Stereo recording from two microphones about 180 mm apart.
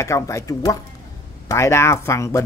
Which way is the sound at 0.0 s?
15° left (ahead or behind).